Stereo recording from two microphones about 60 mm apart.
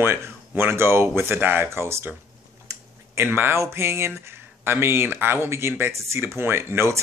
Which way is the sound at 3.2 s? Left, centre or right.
Right.